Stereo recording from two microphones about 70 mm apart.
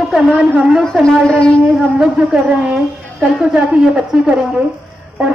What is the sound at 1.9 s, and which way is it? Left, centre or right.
A woman's voice, centre.